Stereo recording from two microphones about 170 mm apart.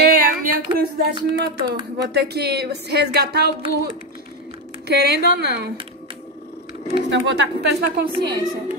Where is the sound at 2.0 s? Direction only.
80° right.